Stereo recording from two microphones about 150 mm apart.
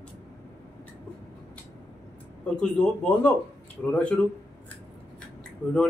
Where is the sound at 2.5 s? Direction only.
5° left (ahead or behind).